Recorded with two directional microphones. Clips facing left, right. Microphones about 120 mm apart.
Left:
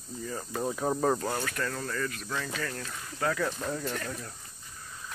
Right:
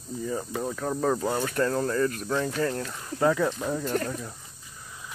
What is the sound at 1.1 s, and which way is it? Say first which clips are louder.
Speech: right 5 dB; 15° right (ahead or behind).